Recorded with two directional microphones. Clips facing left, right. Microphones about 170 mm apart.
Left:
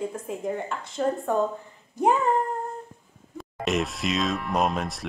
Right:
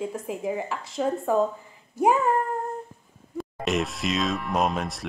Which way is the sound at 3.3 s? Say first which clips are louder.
Even; centre (ahead or behind).